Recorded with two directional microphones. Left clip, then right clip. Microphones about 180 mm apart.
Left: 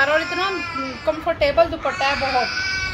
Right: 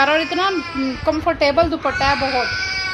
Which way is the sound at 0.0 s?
45° right (ahead or behind).